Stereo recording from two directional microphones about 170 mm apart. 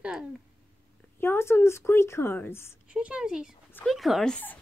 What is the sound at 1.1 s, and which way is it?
Speech, 15° left (ahead or behind).